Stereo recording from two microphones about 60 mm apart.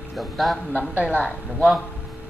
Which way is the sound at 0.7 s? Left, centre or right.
Right.